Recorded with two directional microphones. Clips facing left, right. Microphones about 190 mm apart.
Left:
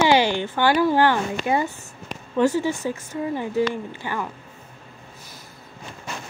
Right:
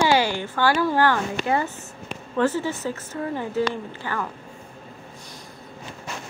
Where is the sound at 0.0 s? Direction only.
20° left (ahead or behind).